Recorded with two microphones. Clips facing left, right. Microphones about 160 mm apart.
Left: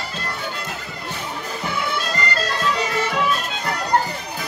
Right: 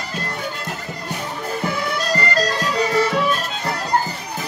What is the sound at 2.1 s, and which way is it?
Music, 40° right (ahead or behind).